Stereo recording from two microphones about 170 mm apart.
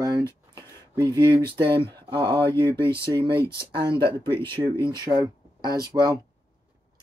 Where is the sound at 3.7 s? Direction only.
30° right (ahead or behind).